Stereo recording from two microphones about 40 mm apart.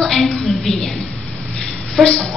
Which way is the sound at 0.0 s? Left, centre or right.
Centre.